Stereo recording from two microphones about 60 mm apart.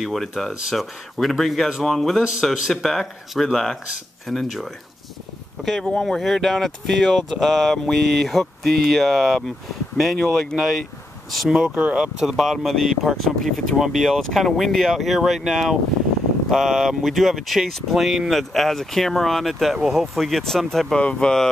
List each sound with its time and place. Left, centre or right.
0.0 s speech: centre
5.7 s speech: centre
11.7 s speech: right
12.0 s speech: centre
21.0 s speech: centre